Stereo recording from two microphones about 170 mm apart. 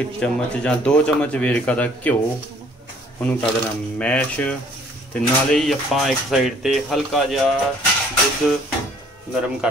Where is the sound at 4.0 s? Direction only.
5° left (ahead or behind).